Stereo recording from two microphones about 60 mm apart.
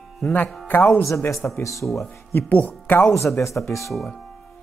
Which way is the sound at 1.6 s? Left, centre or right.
Left.